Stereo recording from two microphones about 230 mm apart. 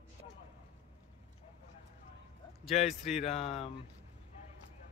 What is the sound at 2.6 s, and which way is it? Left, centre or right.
Speech, left.